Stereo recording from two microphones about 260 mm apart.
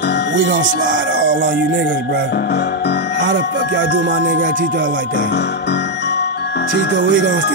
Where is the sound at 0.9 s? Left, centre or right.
Right.